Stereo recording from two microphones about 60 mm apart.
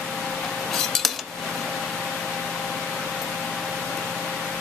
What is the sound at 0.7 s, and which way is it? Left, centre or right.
Cutlery, centre.